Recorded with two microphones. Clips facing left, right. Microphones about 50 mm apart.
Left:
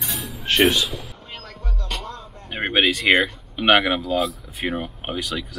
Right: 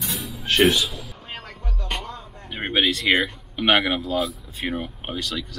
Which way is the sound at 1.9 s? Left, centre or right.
Centre.